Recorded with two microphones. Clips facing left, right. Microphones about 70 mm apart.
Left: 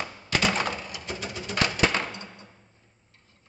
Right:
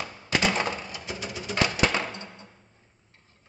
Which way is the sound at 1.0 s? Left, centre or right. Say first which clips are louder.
Even; centre.